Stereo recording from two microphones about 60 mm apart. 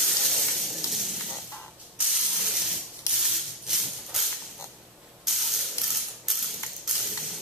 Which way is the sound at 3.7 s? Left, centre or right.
Centre.